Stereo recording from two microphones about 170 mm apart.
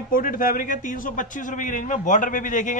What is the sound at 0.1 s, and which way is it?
A man's voice, 55° left (ahead or behind).